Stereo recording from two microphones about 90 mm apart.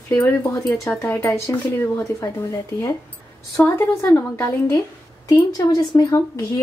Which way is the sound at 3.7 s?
30° left (ahead or behind).